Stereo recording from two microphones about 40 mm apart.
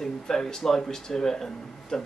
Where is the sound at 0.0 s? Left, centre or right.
Centre.